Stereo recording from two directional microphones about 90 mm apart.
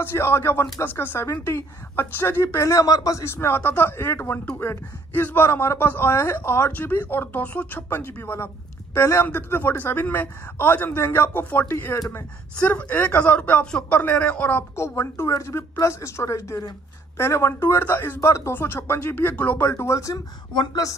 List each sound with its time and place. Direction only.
0.0 s speech: 25° left (ahead or behind)
12.5 s speech: 15° left (ahead or behind)
14.8 s speech: 30° left (ahead or behind)
19.6 s speech: 30° left (ahead or behind)
20.5 s speech: 45° left (ahead or behind)